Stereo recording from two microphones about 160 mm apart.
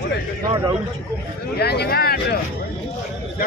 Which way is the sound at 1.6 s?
90° left.